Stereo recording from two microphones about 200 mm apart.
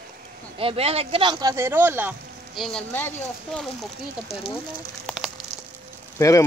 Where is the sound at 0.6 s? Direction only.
30° right (ahead or behind); by 3.6 s 10° left (ahead or behind).